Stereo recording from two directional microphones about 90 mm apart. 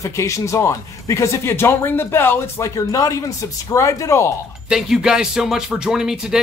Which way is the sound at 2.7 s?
40° left (ahead or behind).